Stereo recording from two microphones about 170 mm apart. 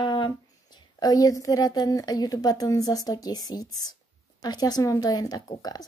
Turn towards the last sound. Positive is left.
turn(degrees=20)  # may be behind; listen again after turning